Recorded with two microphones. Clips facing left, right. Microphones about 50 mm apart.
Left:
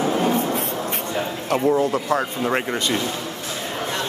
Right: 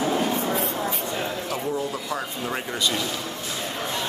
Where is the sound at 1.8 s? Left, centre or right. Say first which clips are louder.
Left 8 dB; left.